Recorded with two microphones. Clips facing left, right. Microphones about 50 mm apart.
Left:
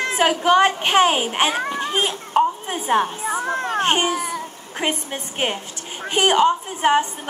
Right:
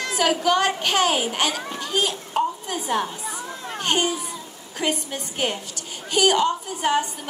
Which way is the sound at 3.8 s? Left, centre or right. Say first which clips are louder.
Left 2 dB; left.